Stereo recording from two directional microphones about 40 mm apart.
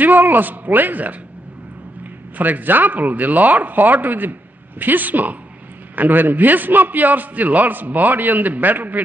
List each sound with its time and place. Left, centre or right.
0.0 s speech: right
2.3 s speech: right